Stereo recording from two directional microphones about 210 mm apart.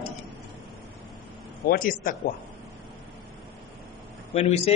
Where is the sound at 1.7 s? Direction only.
40° left (ahead or behind).